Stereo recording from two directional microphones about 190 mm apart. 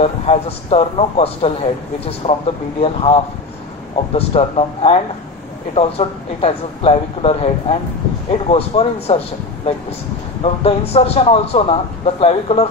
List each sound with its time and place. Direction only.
0.0 s speech: 30° left (ahead or behind)
10.4 s speech: 30° left (ahead or behind)